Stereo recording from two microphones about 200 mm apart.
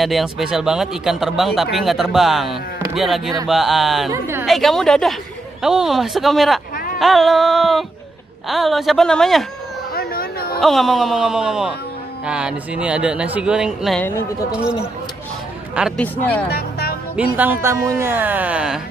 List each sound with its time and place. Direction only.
0.0 s speech: centre (ahead or behind)
4.1 s speech: 10° right (ahead or behind)
4.5 s speech: centre (ahead or behind)
9.9 s a sound: 50° left (ahead or behind)
10.6 s speech: centre (ahead or behind)
16.0 s speech: 10° left (ahead or behind)
16.4 s music: 50° left (ahead or behind)
17.1 s speech: 10° right (ahead or behind)